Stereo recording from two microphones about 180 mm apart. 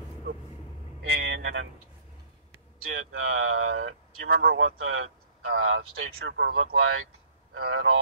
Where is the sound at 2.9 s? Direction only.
90° right; by 6.8 s 70° right (ahead or behind).